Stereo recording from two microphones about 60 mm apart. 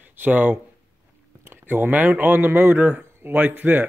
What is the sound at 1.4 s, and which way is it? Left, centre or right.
Speech, right.